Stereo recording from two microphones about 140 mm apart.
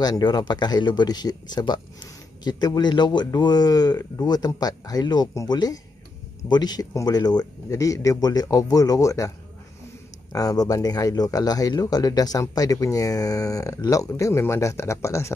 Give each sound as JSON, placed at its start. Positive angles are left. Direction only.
{"t": 0.0, "sound": "speech", "side_deg": 30}
{"t": 10.3, "sound": "speech", "side_deg": 25}